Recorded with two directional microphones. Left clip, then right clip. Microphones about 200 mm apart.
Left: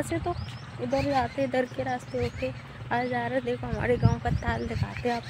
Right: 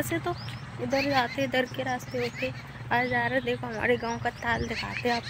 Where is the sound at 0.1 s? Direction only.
5° left (ahead or behind).